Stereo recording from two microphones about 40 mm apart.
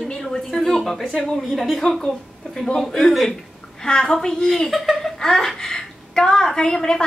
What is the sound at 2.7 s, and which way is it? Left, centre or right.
Speech, centre.